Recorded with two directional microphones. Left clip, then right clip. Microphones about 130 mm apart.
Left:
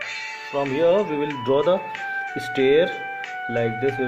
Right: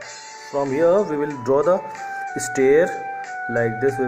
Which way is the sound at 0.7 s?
30° left (ahead or behind).